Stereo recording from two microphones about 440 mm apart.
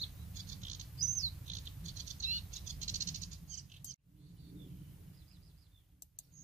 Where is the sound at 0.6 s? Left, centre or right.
Centre.